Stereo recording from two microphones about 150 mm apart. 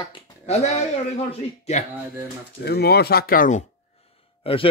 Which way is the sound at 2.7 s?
90° left.